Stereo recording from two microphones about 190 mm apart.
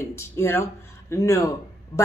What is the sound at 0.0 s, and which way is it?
A woman's voice, 15° left (ahead or behind).